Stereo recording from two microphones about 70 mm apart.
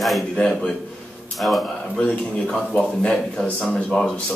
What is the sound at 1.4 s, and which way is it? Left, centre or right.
Speech, centre.